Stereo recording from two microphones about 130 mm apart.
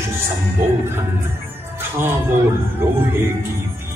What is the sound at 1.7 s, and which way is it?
Music, 20° right (ahead or behind).